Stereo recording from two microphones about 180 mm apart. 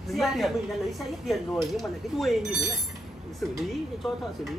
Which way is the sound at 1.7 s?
Centre (ahead or behind).